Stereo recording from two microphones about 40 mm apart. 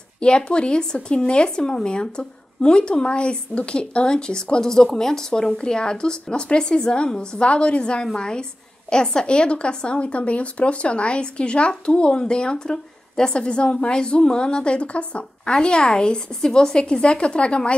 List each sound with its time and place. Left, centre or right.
0.2 s speech: left
15.5 s speech: left